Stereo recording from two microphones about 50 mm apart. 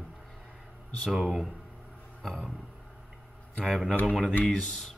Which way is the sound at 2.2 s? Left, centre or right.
Centre.